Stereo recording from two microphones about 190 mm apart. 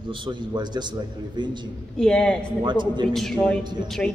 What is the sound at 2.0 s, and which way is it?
Speech, 5° left (ahead or behind).